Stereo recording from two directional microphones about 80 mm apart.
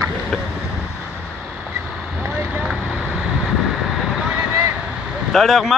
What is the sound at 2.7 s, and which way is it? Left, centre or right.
Vehicle, centre.